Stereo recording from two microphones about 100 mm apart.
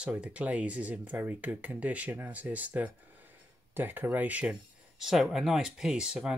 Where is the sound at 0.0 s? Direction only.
10° right (ahead or behind).